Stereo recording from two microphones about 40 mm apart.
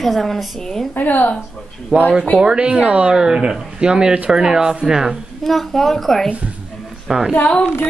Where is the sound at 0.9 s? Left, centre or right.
Left.